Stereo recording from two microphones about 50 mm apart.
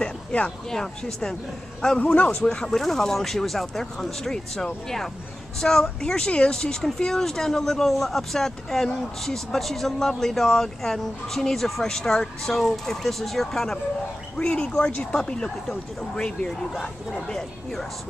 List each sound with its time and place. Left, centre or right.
0.0 s a sound: left
0.7 s speech: centre
2.0 s speech: left
2.7 s speech: centre
14.4 s speech: centre
14.9 s speech: left
15.1 s speech: centre